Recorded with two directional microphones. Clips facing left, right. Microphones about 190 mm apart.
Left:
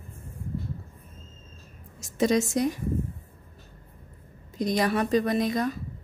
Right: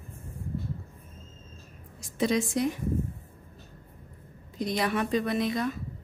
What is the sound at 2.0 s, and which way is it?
Speech, 45° left (ahead or behind).